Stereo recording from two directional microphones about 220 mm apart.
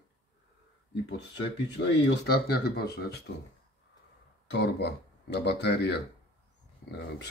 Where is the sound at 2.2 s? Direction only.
45° left (ahead or behind).